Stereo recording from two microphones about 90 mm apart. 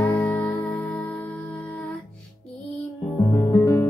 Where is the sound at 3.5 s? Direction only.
25° left (ahead or behind).